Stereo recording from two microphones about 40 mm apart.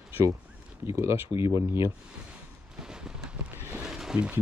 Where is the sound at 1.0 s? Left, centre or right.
Right.